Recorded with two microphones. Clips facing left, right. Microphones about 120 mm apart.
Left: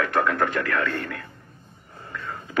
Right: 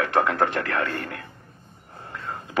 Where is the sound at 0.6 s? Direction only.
35° right (ahead or behind).